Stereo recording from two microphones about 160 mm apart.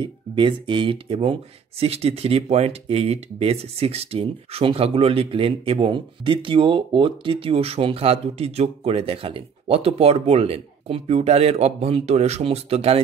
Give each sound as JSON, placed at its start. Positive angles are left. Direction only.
{"t": 0.0, "sound": "speech", "side_deg": -30}